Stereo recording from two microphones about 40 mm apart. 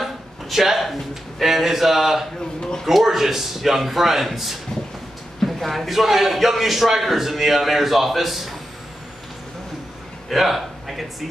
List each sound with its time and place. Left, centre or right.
0.0 s a sound: centre
2.8 s a man's voice: centre
10.3 s a man's voice: centre